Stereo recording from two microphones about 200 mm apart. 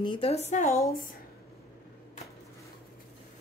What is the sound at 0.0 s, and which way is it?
Speech, 25° left (ahead or behind).